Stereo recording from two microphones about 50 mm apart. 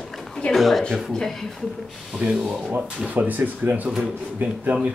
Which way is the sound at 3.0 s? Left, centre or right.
Right.